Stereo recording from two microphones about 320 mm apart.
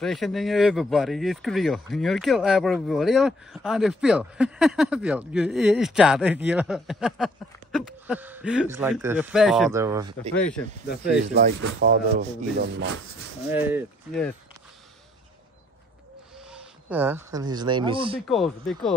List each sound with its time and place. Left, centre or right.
0.0 s speech: centre
11.3 s rub: right
13.5 s speech: centre
16.9 s speech: centre
18.3 s speech: centre